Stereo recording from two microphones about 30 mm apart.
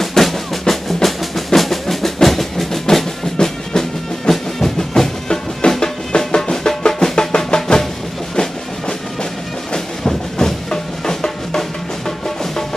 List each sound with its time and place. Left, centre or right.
0.0 s drum: centre
1.0 s percussion: centre
2.2 s train: centre
3.3 s music: left
5.7 s drum: left
6.9 s music: left
9.7 s music: left